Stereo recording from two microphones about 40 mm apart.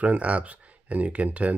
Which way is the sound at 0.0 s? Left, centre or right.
Right.